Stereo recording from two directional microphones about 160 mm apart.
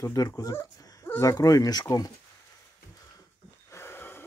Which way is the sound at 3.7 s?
15° left (ahead or behind).